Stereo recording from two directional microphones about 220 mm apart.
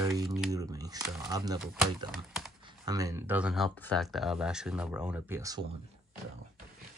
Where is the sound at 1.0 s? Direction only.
Centre (ahead or behind).